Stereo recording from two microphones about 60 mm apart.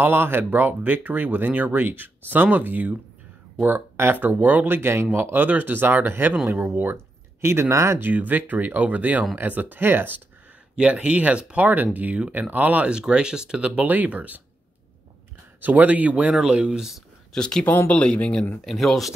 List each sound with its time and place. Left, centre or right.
0.0 s speech: right
7.7 s speech: right
8.0 s speech: right
10.8 s speech: centre
13.8 s speech: right
15.6 s speech: right; by 16.9 s centre
17.3 s speech: centre
17.6 s speech: left
18.6 s speech: centre